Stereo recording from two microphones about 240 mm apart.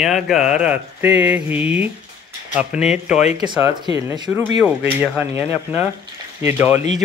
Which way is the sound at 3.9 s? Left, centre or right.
Centre.